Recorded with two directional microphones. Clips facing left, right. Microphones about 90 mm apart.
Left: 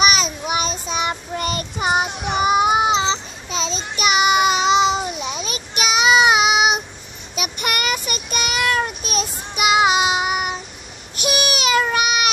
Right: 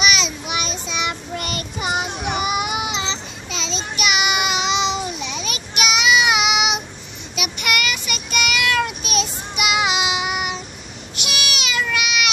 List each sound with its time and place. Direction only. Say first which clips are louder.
0.0 s child singing: left 3 dB; 40° left (ahead or behind)